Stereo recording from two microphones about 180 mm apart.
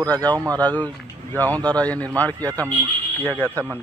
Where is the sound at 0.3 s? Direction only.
20° right (ahead or behind).